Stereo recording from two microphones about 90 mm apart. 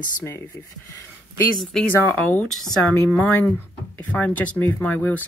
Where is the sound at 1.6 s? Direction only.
5° left (ahead or behind).